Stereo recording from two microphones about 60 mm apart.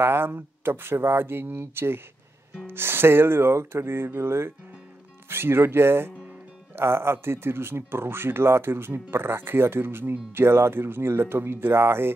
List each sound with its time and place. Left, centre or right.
0.0 s speech: right